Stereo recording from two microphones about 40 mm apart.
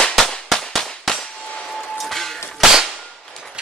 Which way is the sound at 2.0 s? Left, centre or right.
Centre.